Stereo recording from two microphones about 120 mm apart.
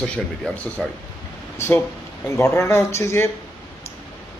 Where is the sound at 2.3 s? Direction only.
25° left (ahead or behind).